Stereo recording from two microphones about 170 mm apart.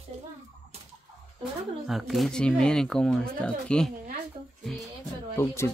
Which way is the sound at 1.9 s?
Centre (ahead or behind).